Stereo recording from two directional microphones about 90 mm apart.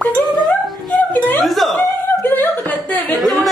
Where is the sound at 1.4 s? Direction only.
Centre (ahead or behind).